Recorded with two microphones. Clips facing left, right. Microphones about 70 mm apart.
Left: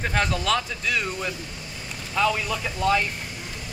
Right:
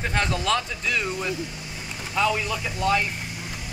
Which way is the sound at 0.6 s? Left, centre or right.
Centre.